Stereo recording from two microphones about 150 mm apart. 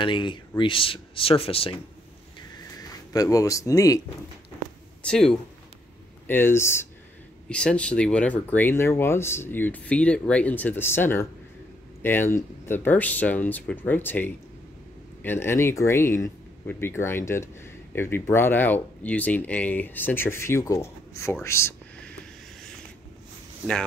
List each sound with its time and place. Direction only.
0.0 s speech: 35° left (ahead or behind)
3.1 s speech: 20° left (ahead or behind)
5.0 s speech: 5° left (ahead or behind)
6.2 s speech: 15° left (ahead or behind)
7.4 s speech: 5° left (ahead or behind)